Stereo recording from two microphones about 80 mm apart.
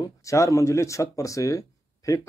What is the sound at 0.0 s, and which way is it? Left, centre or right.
Speech, left.